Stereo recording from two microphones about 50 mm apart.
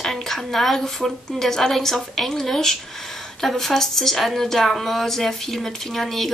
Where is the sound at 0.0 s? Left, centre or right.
Centre.